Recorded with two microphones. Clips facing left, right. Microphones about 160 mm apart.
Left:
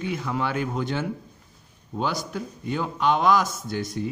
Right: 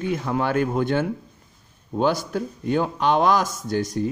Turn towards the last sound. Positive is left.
turn(degrees=-45)  # may be behind; listen again after turning